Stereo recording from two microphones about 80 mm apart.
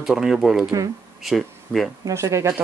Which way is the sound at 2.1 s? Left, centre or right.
Right.